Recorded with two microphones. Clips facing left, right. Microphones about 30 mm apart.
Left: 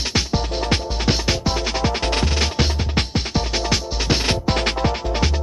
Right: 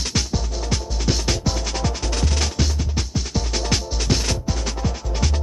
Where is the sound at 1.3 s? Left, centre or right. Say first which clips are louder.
Left 3 dB; left.